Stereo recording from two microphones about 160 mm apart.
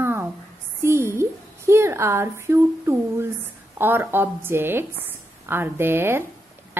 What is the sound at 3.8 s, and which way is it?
A woman's voice, 15° right (ahead or behind).